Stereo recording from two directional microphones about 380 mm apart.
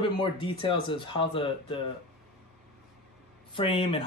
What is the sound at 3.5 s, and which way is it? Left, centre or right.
Speech, centre.